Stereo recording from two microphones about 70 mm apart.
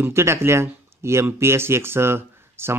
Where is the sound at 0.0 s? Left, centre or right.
Right.